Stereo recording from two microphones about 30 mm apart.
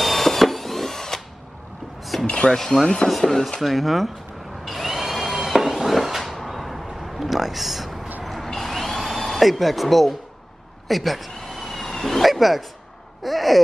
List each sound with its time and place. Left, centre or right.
0.0 s a sound: centre
2.2 s speech: left
3.1 s speech: centre
3.6 s speech: centre
4.6 s tools: centre
5.7 s a sound: centre
8.2 s vehicle: centre
9.0 s speech: centre
11.4 s vehicle: centre
13.2 s a sound: centre